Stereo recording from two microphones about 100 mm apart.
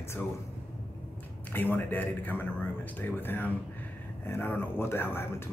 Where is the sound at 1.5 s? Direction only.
20° left (ahead or behind).